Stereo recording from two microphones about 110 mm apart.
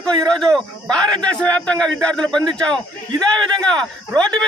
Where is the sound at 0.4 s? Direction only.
5° left (ahead or behind).